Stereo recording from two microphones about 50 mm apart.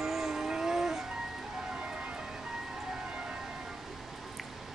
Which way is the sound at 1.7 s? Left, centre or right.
Right.